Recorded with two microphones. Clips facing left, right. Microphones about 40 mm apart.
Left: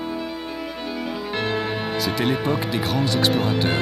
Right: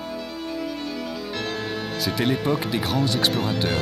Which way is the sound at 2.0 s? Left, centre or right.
Centre.